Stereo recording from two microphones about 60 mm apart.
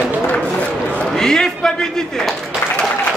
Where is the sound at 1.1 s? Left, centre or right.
Centre.